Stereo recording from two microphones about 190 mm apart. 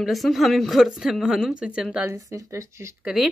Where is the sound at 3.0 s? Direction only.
5° right (ahead or behind).